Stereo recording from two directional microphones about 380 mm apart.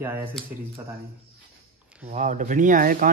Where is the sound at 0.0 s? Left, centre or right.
Centre.